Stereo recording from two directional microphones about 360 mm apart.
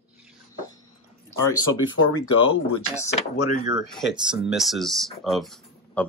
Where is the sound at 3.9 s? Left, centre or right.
Centre.